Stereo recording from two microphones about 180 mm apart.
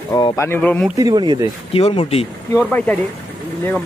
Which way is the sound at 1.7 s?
35° left (ahead or behind).